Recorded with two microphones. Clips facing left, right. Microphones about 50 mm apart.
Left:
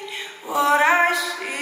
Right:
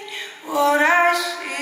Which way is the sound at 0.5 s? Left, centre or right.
Centre.